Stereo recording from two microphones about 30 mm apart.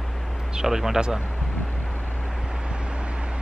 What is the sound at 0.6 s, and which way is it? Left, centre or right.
Speech, centre.